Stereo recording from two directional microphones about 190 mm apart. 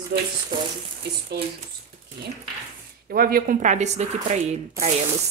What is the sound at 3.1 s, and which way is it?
Speech, 50° right (ahead or behind).